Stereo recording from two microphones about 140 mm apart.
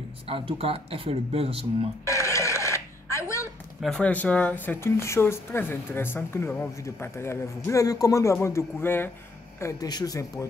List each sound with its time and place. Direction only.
0.3 s speech: 40° right (ahead or behind)
2.0 s a sound: 20° left (ahead or behind)
3.8 s speech: 5° left (ahead or behind); by 10.4 s 25° left (ahead or behind)